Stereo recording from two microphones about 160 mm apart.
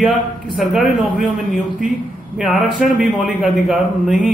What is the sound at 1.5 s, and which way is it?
Speech, 55° right (ahead or behind).